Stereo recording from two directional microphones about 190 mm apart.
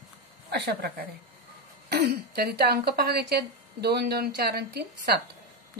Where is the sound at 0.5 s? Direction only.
60° right (ahead or behind).